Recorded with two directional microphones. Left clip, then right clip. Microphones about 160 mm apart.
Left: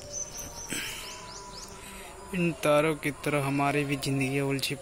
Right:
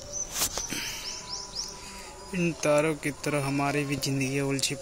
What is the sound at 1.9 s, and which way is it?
Speech, centre (ahead or behind).